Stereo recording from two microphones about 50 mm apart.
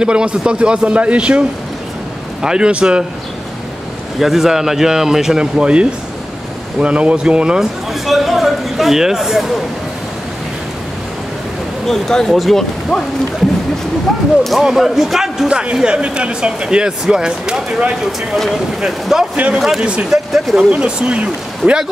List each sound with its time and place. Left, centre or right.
0.0 s speech: centre
2.4 s speech: centre
4.2 s speech: centre
7.9 s speech: centre
11.8 s speech: centre
14.6 s speech: centre
15.4 s speech: centre
18.3 s speech: centre
20.7 s speech: right